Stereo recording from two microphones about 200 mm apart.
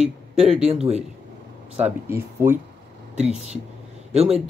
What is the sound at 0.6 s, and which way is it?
Speech, 30° right (ahead or behind).